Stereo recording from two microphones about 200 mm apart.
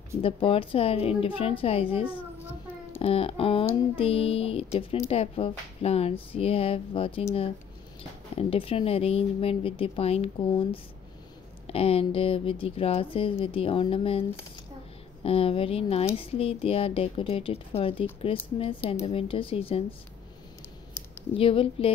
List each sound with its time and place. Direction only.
0.2 s speech: 25° left (ahead or behind)
8.4 s speech: 30° left (ahead or behind)
15.2 s speech: 30° left (ahead or behind)
21.4 s speech: 25° left (ahead or behind)